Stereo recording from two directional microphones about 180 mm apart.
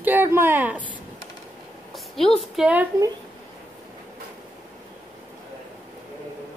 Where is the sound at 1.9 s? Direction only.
Centre (ahead or behind).